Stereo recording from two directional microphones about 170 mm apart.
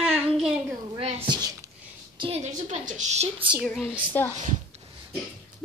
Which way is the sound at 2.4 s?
45° right (ahead or behind).